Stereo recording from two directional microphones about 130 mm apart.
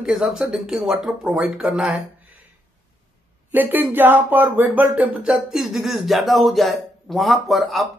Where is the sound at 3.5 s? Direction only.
15° right (ahead or behind).